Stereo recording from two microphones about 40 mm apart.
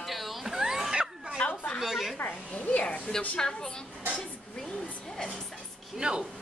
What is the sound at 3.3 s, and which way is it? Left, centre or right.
Speech, centre.